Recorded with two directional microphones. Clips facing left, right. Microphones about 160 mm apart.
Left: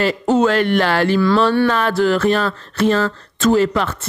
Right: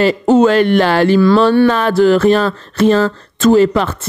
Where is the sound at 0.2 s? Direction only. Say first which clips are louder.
Right 5 dB; 25° right (ahead or behind).